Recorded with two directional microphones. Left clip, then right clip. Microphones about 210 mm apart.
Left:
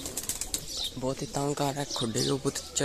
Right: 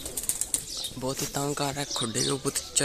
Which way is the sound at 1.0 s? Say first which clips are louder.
Right 2 dB; 5° right (ahead or behind).